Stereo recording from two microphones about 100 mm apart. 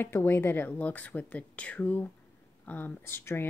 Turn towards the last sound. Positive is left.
turn(degrees=25)  # may be behind; listen again after turning